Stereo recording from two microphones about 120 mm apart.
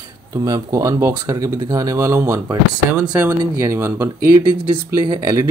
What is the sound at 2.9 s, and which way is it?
Speech, 10° right (ahead or behind).